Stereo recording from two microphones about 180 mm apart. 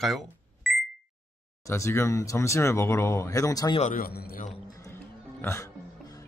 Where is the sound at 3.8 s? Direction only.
50° left (ahead or behind).